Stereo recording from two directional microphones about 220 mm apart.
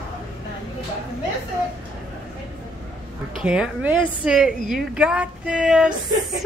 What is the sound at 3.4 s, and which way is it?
A woman's voice, 5° right (ahead or behind).